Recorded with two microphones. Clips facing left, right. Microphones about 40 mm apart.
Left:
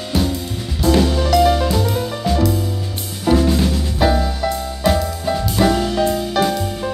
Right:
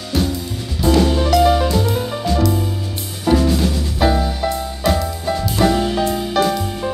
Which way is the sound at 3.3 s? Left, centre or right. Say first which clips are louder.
Even; centre.